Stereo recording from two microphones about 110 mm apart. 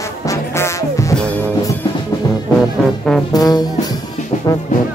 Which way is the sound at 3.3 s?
35° left (ahead or behind).